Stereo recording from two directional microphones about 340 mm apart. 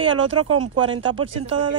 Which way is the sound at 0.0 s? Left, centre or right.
Centre.